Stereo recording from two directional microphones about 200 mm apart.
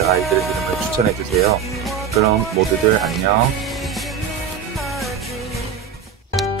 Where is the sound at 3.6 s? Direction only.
Centre (ahead or behind).